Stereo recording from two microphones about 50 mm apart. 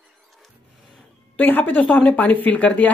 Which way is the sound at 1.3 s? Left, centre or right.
Left.